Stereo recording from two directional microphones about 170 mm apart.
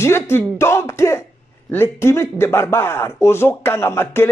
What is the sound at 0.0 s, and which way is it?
A man's voice, 15° left (ahead or behind).